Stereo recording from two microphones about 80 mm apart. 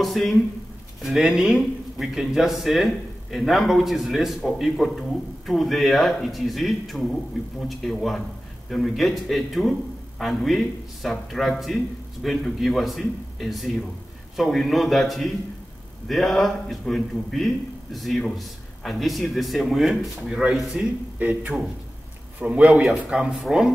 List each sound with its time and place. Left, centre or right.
0.0 s a man's voice: centre